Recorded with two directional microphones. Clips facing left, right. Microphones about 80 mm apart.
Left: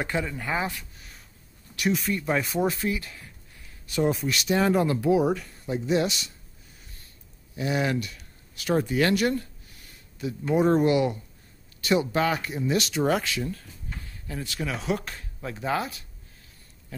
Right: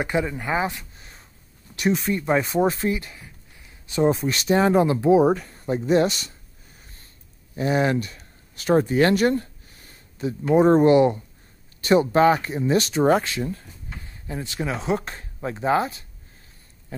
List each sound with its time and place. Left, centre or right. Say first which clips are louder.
0.0 s a man's voice: right 5 dB; centre
3.0 s speech: right 2 dB; centre; by 6.3 s right
7.5 s speech: right 5 dB; right